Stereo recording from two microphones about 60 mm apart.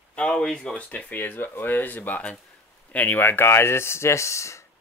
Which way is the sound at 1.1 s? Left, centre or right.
Left.